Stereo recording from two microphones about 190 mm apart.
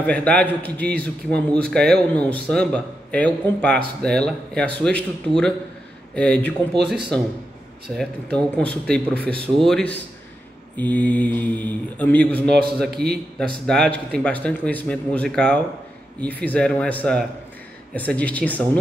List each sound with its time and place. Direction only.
0.0 s a man's voice: 5° left (ahead or behind)
8.0 s a man's voice: 5° left (ahead or behind)
12.9 s speech: 55° right (ahead or behind)
13.7 s a man's voice: 5° left (ahead or behind)